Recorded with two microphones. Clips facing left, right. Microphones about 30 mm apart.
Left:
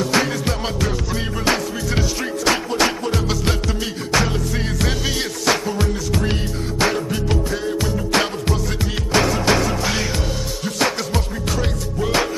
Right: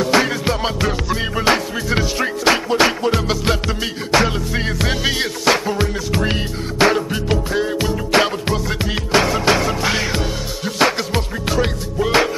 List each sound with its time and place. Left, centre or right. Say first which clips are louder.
0.0 s music: right 3 dB; centre